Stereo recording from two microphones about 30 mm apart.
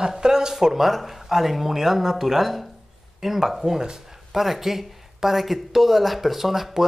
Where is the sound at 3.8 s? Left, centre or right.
Right.